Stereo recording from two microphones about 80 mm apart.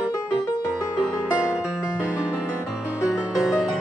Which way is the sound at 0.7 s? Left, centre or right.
Centre.